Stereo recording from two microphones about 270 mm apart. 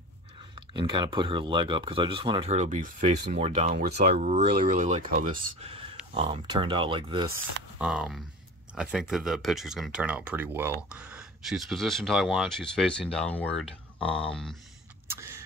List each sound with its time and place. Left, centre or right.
0.6 s speech: centre
7.8 s speech: centre
15.0 s vehicle: centre